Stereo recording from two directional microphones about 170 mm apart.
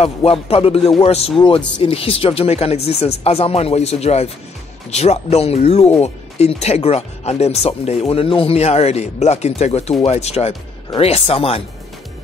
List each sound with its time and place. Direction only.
0.0 s speech: 35° left (ahead or behind)